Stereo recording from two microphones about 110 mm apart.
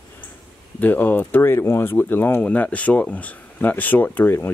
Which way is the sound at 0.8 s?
15° left (ahead or behind).